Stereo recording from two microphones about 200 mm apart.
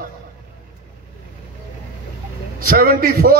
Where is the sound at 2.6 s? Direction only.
45° right (ahead or behind).